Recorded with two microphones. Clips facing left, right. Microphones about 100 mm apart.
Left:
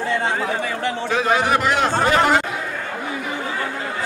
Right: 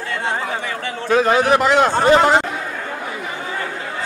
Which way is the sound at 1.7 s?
30° right (ahead or behind).